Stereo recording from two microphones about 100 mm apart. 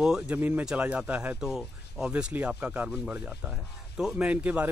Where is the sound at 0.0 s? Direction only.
5° right (ahead or behind).